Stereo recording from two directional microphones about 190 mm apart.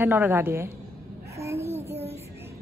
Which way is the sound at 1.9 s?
30° right (ahead or behind).